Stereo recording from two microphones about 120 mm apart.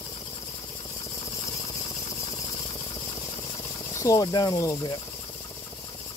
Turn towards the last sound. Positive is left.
turn(degrees=30)  # may be behind; listen again after turning